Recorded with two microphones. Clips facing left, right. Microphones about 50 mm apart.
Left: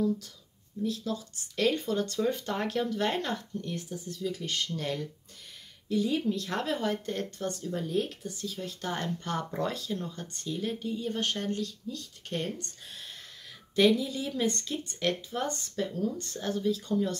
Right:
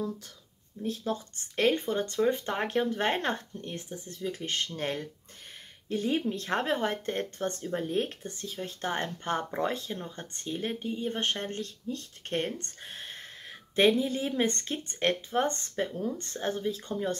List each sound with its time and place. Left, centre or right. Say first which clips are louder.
0.8 s speech: right 1 dB; right